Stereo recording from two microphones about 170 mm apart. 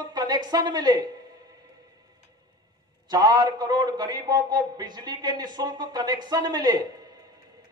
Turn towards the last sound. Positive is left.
turn(degrees=-25)  # may be behind; listen again after turning